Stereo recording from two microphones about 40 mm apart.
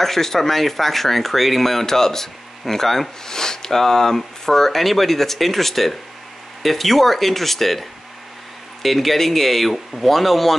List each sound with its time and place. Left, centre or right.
0.0 s speech: centre
8.8 s speech: centre